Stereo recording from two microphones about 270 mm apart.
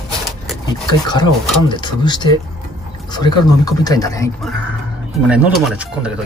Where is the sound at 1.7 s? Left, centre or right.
Centre.